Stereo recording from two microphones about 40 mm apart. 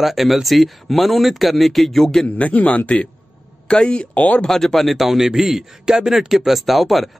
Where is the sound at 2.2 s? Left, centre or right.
Left.